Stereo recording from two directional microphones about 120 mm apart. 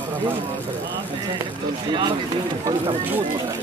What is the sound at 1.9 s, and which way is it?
Speech, 40° right (ahead or behind).